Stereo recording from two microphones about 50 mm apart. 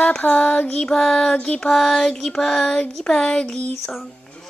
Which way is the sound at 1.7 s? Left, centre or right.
Centre.